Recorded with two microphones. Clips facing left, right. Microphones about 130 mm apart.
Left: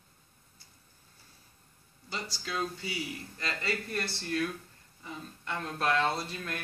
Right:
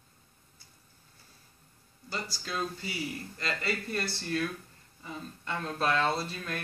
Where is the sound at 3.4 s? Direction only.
Centre (ahead or behind).